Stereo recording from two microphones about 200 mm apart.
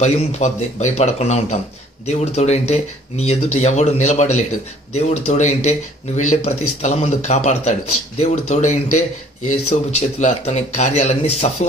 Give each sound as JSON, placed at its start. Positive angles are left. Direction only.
{"t": 0.0, "sound": "speech", "side_deg": 35}